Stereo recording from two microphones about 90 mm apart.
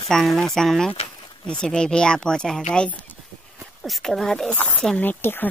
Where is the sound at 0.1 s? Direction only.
5° left (ahead or behind).